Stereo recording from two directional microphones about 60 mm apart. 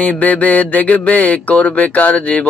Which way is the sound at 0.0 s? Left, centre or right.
Left.